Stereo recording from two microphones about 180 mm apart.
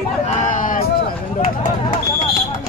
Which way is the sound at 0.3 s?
45° left (ahead or behind).